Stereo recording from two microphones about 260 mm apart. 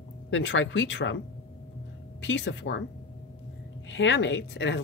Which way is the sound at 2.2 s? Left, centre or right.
Left.